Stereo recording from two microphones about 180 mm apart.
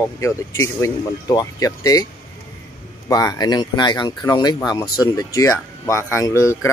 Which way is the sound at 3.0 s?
20° left (ahead or behind).